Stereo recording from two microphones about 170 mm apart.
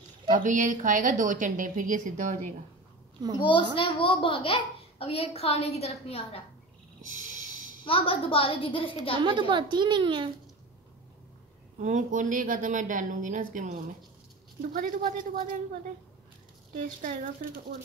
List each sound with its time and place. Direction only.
0.3 s a woman's voice: 50° right (ahead or behind)
3.3 s a child's voice: 30° left (ahead or behind)
7.1 s a sound: 50° right (ahead or behind)
7.8 s a child's voice: 30° left (ahead or behind)
9.1 s a woman's voice: 25° right (ahead or behind)
11.8 s a woman's voice: 45° right (ahead or behind)
16.8 s a woman's voice: 50° right (ahead or behind)